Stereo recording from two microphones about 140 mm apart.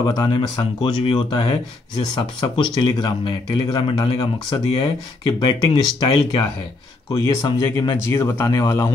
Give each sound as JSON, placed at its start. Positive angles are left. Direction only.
{"t": 0.0, "sound": "speech", "side_deg": 25}